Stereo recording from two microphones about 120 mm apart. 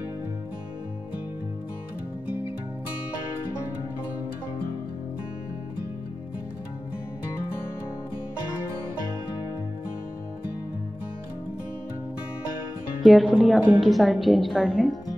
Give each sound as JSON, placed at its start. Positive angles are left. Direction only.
{"t": 13.0, "sound": "a woman's voice", "side_deg": -5}